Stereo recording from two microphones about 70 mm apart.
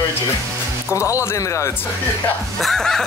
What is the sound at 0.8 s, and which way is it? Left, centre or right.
Speech, right.